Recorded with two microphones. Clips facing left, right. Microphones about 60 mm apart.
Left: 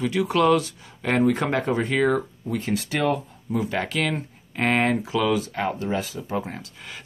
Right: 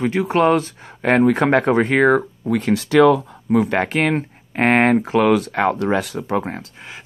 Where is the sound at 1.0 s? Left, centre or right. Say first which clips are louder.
Right 6 dB; right.